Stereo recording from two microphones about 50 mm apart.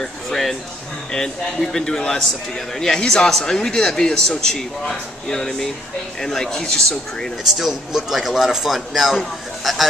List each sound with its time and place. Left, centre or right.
0.0 s speech: centre
7.4 s speech: centre